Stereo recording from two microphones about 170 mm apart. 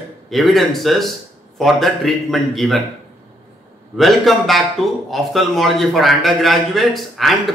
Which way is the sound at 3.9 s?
Centre (ahead or behind).